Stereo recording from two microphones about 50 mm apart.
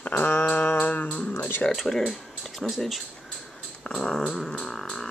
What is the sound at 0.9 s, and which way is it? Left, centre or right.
Speech, left.